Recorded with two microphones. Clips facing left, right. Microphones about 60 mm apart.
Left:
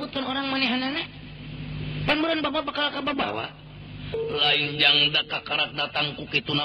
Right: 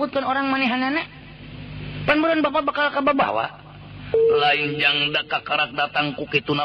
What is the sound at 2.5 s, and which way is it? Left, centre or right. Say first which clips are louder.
Speech: right 6 dB; right.